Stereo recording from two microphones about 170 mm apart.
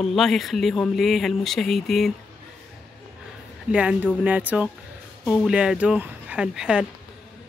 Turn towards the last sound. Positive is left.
turn(degrees=-5)  # may be behind; listen again after turning